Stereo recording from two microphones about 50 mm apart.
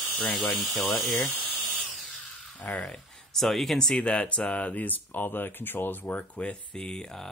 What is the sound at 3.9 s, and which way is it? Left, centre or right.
Speech, left.